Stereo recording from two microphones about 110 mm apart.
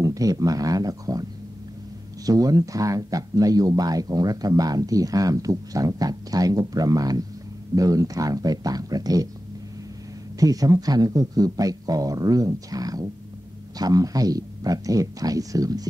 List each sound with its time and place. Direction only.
0.0 s speech: 30° right (ahead or behind)
2.2 s speech: 35° right (ahead or behind)
10.4 s speech: 35° right (ahead or behind)